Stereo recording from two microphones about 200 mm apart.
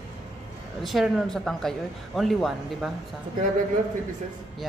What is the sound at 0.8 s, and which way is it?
Speech, centre (ahead or behind).